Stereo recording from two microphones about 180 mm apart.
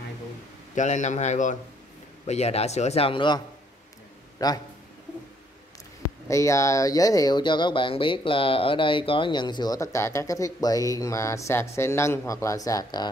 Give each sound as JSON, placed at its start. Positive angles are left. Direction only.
{"t": 0.7, "sound": "a man's voice", "side_deg": 40}
{"t": 6.2, "sound": "speech", "side_deg": 15}